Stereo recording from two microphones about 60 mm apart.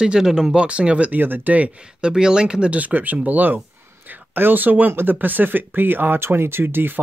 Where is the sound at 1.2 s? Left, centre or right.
Right.